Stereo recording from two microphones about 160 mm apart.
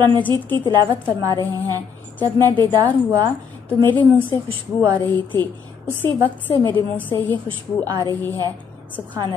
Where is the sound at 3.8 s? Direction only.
10° left (ahead or behind).